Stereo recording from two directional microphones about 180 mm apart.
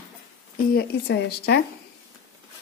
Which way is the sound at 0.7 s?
65° left (ahead or behind).